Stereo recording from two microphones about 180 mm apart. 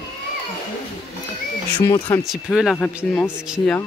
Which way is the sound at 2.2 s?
Centre (ahead or behind).